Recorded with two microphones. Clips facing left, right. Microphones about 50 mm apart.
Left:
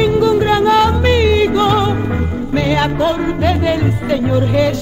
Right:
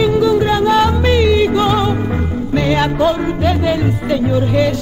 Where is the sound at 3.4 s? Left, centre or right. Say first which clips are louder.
Even; centre.